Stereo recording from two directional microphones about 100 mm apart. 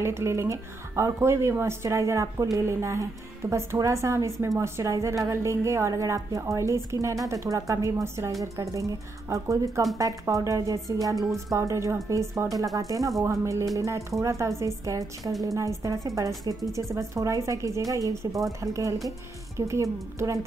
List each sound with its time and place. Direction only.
0.0 s a woman's voice: 25° right (ahead or behind)